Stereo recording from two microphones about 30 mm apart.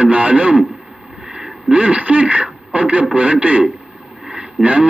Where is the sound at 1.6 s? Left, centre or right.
Right.